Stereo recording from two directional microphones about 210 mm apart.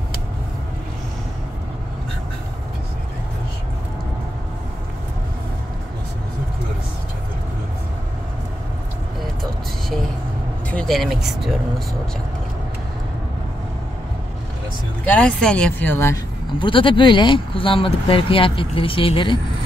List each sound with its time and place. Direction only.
10.7 s speech: centre (ahead or behind)
15.0 s speech: 5° left (ahead or behind)
16.5 s speech: 25° left (ahead or behind)